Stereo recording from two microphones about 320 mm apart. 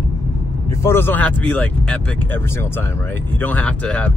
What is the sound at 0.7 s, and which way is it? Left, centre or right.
Speech, centre.